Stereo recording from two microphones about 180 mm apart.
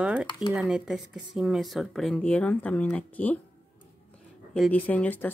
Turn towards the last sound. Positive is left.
turn(degrees=10)  # may be behind; listen again after turning